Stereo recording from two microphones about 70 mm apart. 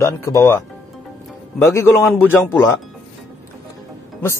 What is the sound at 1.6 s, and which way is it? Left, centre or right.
A man's voice, left.